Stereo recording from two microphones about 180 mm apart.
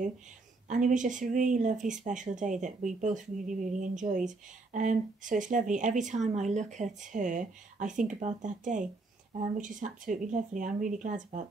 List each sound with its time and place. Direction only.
0.7 s speech: 45° right (ahead or behind)